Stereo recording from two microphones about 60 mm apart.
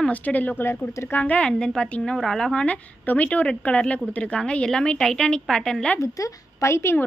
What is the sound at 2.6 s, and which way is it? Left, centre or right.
A woman's voice, left.